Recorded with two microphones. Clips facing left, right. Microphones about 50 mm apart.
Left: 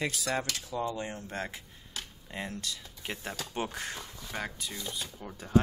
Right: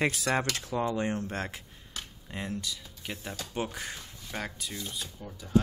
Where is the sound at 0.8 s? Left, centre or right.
Right.